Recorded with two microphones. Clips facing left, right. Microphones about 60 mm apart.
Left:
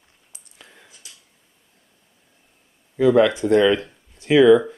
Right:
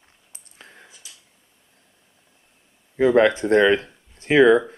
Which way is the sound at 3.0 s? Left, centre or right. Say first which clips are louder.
Left 1 dB; right.